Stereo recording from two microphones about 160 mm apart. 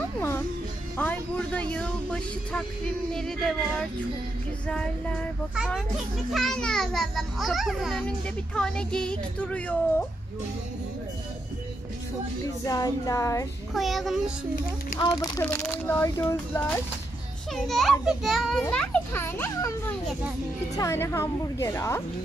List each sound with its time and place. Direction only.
0.9 s a child's voice: 10° left (ahead or behind)
12.6 s music: 20° left (ahead or behind)
13.7 s a child's voice: centre (ahead or behind)
15.0 s music: 25° left (ahead or behind)
15.4 s speech: 10° left (ahead or behind)
17.6 s a child's voice: centre (ahead or behind)
18.6 s speech: 10° left (ahead or behind)
20.7 s speech: 20° left (ahead or behind)